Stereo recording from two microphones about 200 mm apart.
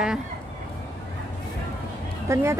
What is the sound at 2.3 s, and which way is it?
Speech, 15° right (ahead or behind).